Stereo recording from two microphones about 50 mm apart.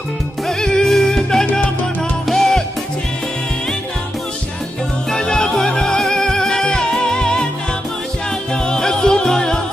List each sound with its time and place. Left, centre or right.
0.5 s music: centre
1.4 s music: left
2.2 s music: centre
5.1 s music: centre
8.6 s music: centre